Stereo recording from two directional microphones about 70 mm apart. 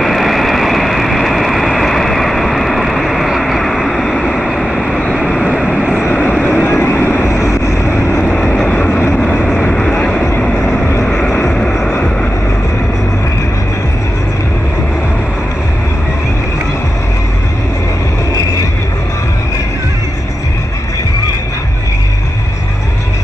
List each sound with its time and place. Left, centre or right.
0.0 s vehicle: centre; by 7.2 s left
8.5 s vehicle: centre